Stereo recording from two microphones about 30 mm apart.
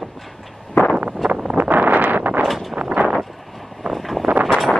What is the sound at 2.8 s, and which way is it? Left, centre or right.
Vehicle, right.